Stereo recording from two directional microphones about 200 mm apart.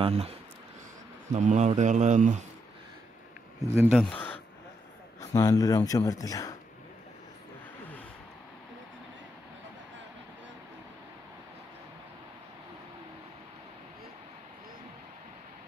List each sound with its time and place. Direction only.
0.0 s speech: 30° right (ahead or behind)
3.7 s speech: centre (ahead or behind)
5.3 s speech: 15° left (ahead or behind)